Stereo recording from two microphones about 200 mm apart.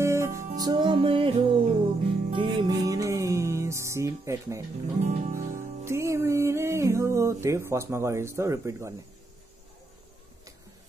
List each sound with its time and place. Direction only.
0.0 s music: 15° right (ahead or behind)
5.0 s music: 35° right (ahead or behind)
5.9 s speech: 15° right (ahead or behind)